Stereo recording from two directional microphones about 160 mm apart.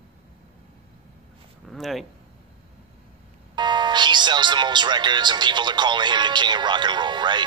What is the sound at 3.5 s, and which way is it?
Music, 30° right (ahead or behind).